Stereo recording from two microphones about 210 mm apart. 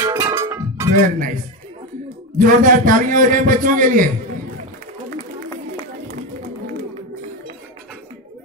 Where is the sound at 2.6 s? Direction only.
40° right (ahead or behind).